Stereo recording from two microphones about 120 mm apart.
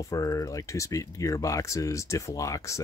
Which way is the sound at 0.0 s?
30° left (ahead or behind).